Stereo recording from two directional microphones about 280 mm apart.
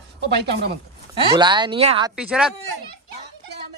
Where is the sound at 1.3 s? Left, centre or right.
Centre.